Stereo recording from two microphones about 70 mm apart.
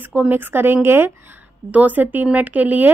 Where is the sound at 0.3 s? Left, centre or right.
Right.